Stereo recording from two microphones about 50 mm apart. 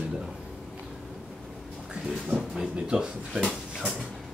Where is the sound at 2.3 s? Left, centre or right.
Centre.